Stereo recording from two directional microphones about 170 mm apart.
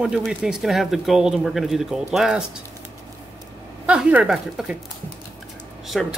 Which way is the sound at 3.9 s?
5° right (ahead or behind).